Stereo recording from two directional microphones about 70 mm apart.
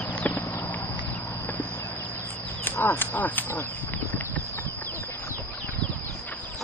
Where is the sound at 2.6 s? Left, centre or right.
Left.